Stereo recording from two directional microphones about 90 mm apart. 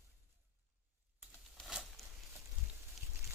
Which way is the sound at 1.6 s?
10° left (ahead or behind).